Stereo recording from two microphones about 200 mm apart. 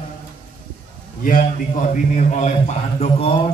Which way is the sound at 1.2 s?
40° left (ahead or behind).